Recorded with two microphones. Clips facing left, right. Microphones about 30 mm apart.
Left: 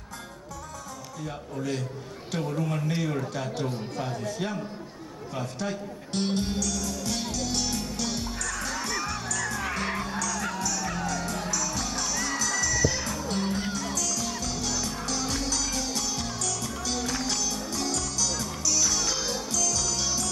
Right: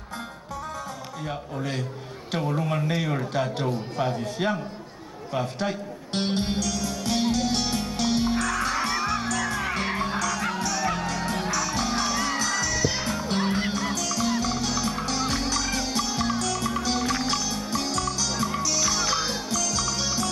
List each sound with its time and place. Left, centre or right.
1.2 s a man's voice: right
5.3 s music: right